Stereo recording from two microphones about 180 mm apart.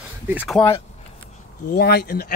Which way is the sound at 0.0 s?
5° right (ahead or behind).